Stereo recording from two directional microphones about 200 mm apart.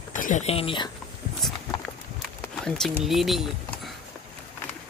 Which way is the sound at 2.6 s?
Centre (ahead or behind).